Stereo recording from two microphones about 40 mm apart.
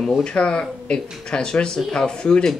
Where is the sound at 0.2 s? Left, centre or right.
Left.